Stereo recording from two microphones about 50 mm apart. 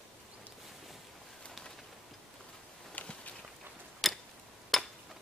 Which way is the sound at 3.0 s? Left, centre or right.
Left.